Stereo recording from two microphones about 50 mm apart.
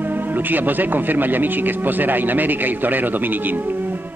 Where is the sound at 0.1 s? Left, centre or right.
Right.